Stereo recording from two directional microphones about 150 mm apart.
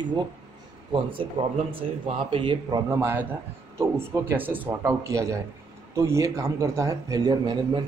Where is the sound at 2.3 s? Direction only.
35° right (ahead or behind).